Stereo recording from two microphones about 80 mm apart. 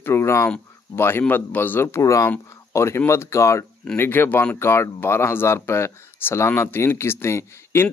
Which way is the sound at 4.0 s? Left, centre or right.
Left.